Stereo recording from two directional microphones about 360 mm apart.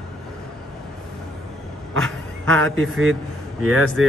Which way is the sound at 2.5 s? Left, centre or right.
Right.